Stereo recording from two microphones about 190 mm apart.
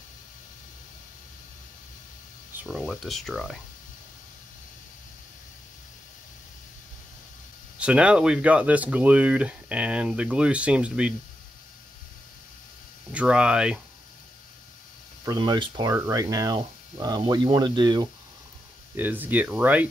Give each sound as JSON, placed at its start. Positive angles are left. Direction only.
{"t": 2.5, "sound": "a sound", "side_deg": -10}
{"t": 2.8, "sound": "speech", "side_deg": 0}
{"t": 7.8, "sound": "speech", "side_deg": -5}
{"t": 13.1, "sound": "speech", "side_deg": -5}
{"t": 15.2, "sound": "speech", "side_deg": -25}
{"t": 18.9, "sound": "speech", "side_deg": -10}